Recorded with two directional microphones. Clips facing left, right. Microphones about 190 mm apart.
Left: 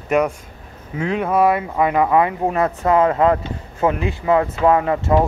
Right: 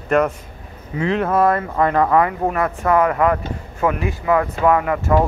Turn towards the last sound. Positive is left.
turn(degrees=25)  # may be behind; listen again after turning